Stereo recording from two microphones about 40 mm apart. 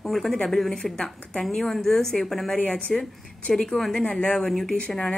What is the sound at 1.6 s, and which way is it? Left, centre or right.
Speech, centre.